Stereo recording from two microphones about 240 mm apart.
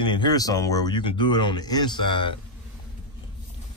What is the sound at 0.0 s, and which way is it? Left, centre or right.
Speech, centre.